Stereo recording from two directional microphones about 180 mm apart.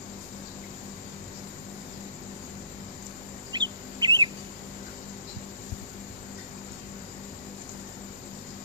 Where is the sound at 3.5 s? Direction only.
25° right (ahead or behind).